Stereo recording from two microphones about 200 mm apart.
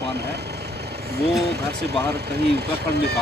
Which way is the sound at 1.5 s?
55° right (ahead or behind).